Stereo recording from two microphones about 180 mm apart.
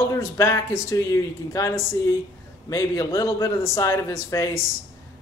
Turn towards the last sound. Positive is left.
turn(degrees=20)  # may be behind; listen again after turning